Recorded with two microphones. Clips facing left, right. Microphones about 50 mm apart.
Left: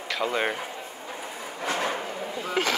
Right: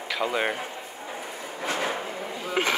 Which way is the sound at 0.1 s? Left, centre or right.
Centre.